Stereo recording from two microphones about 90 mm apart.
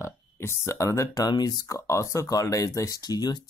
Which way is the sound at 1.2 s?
50° left (ahead or behind).